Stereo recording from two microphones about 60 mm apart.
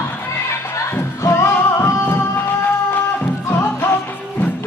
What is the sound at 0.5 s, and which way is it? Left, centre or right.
Music, left.